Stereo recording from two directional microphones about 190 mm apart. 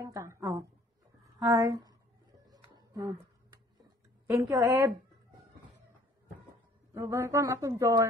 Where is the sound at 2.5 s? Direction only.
20° right (ahead or behind).